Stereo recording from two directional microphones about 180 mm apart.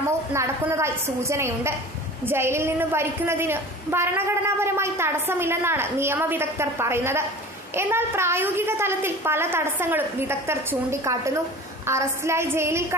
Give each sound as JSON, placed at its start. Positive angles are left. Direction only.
{"t": 0.3, "sound": "a woman's voice", "side_deg": -15}